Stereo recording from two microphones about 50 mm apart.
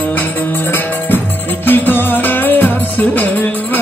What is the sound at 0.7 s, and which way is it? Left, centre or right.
Music, left.